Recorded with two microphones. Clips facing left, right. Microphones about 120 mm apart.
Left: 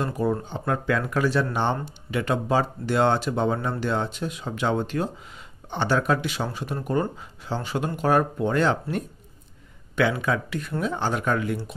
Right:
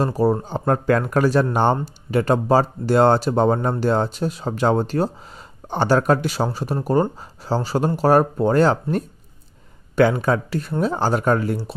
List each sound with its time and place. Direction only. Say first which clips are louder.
0.0 s speech: right 6 dB; 35° right (ahead or behind)